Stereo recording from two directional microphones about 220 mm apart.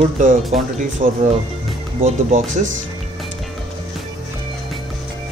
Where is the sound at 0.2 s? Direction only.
35° right (ahead or behind).